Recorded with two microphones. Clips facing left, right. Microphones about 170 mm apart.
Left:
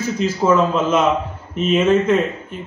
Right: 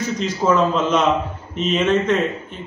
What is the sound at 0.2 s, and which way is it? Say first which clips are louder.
A man's voice: left 2 dB; 5° left (ahead or behind).